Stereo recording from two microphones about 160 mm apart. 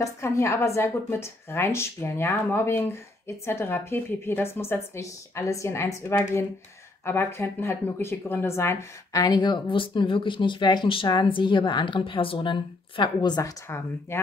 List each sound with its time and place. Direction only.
0.0 s a woman's voice: 20° left (ahead or behind)
13.7 s a woman's voice: 15° left (ahead or behind)